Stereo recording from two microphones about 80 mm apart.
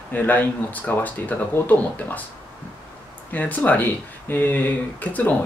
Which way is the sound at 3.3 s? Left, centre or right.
Left.